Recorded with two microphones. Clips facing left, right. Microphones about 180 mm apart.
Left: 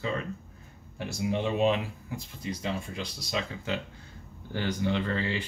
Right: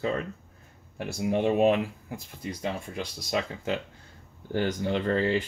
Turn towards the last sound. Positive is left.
turn(degrees=-45)  # may be behind; listen again after turning